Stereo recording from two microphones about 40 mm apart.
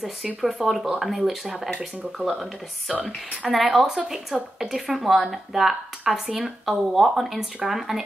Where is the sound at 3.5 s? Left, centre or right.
Centre.